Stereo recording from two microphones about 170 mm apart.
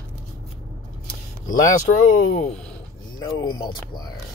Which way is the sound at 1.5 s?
50° left (ahead or behind).